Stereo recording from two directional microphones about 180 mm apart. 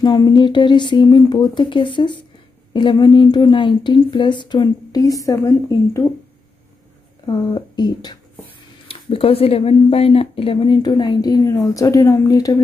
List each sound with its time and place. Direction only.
0.0 s speech: 25° left (ahead or behind)
7.2 s speech: 25° left (ahead or behind)